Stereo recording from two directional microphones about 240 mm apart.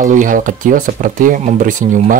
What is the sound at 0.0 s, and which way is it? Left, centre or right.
Speech, right.